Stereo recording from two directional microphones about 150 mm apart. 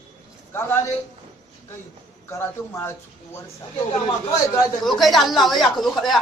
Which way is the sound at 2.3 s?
15° left (ahead or behind).